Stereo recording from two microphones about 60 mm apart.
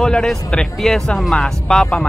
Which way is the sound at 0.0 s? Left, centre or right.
Centre.